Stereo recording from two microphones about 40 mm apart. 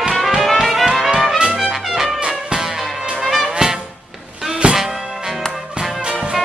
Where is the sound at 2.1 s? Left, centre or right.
Right.